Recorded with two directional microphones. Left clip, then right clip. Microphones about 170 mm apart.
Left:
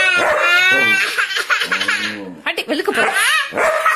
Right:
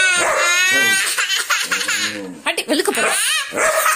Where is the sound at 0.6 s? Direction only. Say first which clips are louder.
Left 2 dB; 90° right.